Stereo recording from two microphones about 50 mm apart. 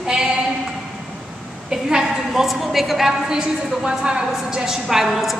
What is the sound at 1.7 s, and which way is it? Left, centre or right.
A woman's voice, centre.